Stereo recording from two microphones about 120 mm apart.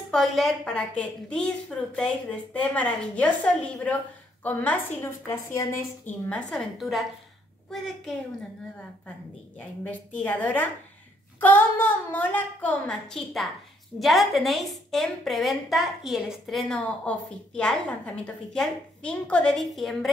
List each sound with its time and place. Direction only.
0.1 s a woman's voice: 5° left (ahead or behind)
5.2 s a woman's voice: 25° left (ahead or behind)
6.2 s a woman's voice: 10° left (ahead or behind)
9.6 s a woman's voice: 15° left (ahead or behind)